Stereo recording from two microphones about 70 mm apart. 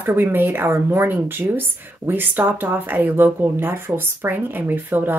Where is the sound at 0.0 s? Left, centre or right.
Right.